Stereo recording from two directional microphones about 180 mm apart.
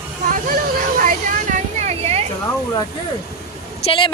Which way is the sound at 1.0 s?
45° right (ahead or behind).